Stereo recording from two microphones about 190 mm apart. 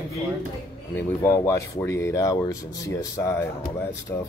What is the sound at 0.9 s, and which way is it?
Speech, 15° left (ahead or behind).